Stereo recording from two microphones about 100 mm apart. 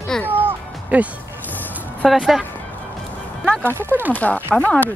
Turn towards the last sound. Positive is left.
turn(degrees=15)  # may be behind; listen again after turning